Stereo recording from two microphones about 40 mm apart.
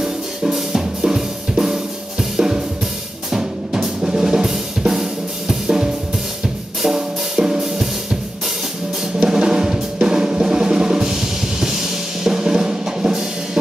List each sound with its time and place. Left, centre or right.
0.0 s drum kit: centre
3.3 s drum: centre
6.8 s music: centre
9.0 s drum: centre